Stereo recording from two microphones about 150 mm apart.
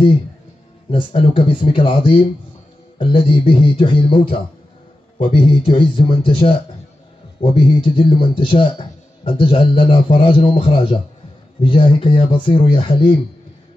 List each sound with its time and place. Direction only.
0.8 s speech: 35° left (ahead or behind)